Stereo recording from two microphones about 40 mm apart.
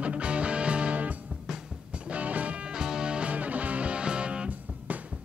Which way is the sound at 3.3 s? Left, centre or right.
Right.